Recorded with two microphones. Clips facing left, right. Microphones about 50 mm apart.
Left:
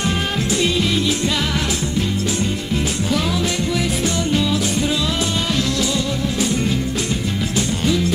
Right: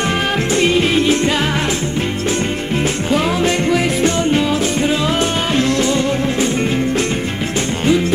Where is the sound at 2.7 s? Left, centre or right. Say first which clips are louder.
Right 5 dB; right.